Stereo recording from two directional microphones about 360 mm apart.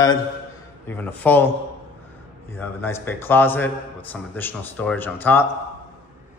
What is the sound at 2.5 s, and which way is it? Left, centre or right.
A man's voice, centre.